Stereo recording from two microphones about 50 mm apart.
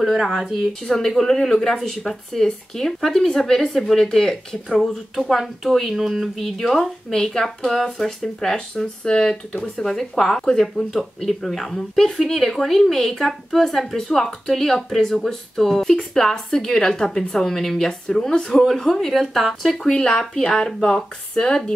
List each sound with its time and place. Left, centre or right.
0.0 s speech: centre
5.1 s speech: centre
8.5 s speech: centre